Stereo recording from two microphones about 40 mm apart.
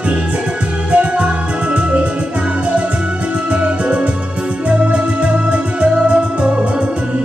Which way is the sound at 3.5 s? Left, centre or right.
Right.